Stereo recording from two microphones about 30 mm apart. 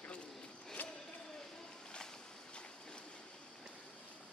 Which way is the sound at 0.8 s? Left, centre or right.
Left.